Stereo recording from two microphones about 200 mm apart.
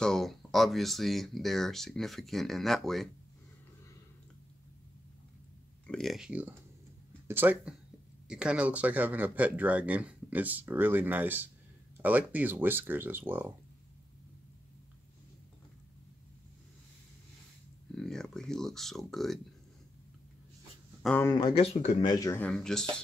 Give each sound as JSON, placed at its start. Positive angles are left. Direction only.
{"t": 0.0, "sound": "speech", "side_deg": 0}
{"t": 5.9, "sound": "speech", "side_deg": 0}
{"t": 17.9, "sound": "speech", "side_deg": 5}
{"t": 21.0, "sound": "speech", "side_deg": 5}
{"t": 22.0, "sound": "speech", "side_deg": 20}
{"t": 22.4, "sound": "speech", "side_deg": 5}